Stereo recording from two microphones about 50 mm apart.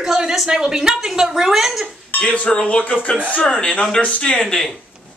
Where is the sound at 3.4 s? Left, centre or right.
Centre.